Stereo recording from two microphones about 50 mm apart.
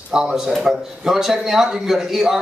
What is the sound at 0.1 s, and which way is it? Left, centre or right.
A man's voice, centre.